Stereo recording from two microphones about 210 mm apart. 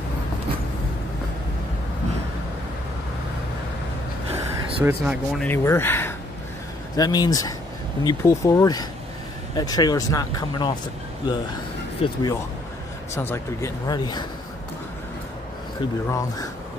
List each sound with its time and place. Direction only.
4.3 s a sound: 25° right (ahead or behind)
4.8 s speech: 5° right (ahead or behind)
5.4 s speech: 10° left (ahead or behind)
16.1 s speech: 15° left (ahead or behind)